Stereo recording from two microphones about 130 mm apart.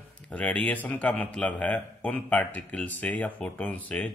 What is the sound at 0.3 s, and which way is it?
Speech, 10° left (ahead or behind).